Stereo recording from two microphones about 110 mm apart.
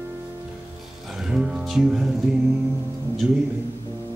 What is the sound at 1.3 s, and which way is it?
Music, 5° right (ahead or behind).